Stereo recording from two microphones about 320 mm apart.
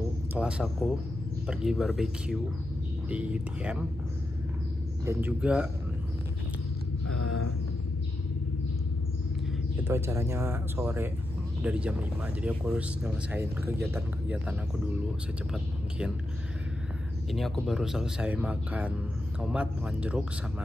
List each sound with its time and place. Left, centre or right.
0.3 s speech: centre
5.0 s speech: centre
7.1 s a sound: left
9.8 s speech: centre
17.3 s speech: centre